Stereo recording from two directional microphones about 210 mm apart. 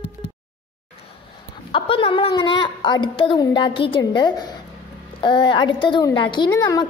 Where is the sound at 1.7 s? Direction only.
25° left (ahead or behind).